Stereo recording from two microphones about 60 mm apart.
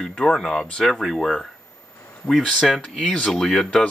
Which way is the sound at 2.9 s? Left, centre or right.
Centre.